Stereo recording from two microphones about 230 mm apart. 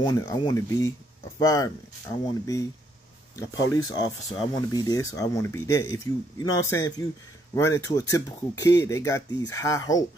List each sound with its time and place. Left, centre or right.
0.0 s speech: centre